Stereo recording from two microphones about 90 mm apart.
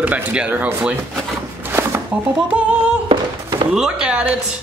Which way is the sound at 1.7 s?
25° right (ahead or behind).